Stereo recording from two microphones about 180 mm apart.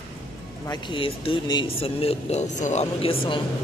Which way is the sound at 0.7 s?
25° left (ahead or behind).